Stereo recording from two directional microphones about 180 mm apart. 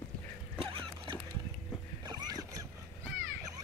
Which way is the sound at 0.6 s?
30° right (ahead or behind).